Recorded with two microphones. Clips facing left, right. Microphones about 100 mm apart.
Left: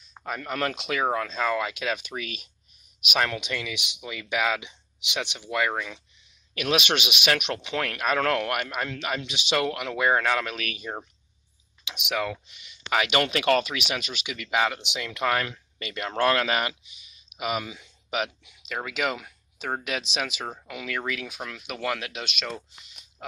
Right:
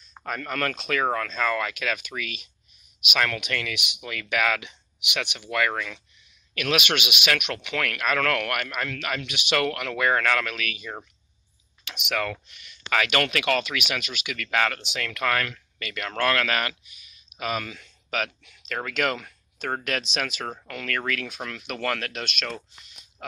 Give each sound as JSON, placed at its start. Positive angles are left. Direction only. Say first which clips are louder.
{"t": 0.2, "sound": "speech", "louder": "even", "side_deg": 15}
{"t": 3.2, "sound": "speech", "louder": "even", "side_deg": 20}
{"t": 6.5, "sound": "speech", "louder": "even", "side_deg": 30}
{"t": 10.5, "sound": "speech", "louder": "even", "side_deg": 35}
{"t": 11.8, "sound": "speech", "louder": "even", "side_deg": 15}
{"t": 13.4, "sound": "speech", "louder": "left 2 dB", "side_deg": 35}
{"t": 14.3, "sound": "speech", "louder": "even", "side_deg": 15}